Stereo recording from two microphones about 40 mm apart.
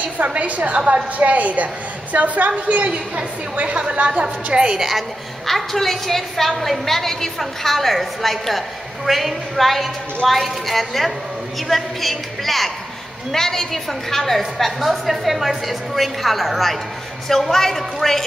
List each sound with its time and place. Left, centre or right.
0.3 s a woman's voice: right
4.7 s a woman's voice: centre
5.5 s a woman's voice: centre